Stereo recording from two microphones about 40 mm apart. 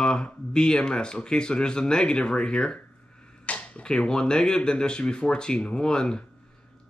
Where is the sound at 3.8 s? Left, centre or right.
Left.